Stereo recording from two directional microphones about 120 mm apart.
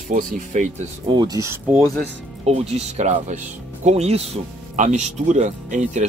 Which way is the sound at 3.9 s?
60° right (ahead or behind).